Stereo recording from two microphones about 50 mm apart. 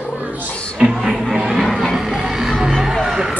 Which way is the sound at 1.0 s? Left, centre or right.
Centre.